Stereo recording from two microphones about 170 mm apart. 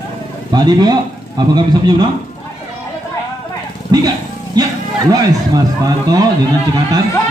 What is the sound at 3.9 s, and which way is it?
A man's voice, 25° right (ahead or behind).